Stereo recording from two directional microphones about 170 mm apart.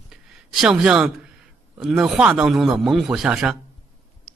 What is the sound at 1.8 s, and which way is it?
A man's voice, centre (ahead or behind).